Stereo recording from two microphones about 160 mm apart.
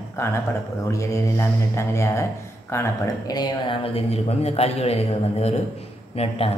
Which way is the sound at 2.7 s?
20° left (ahead or behind).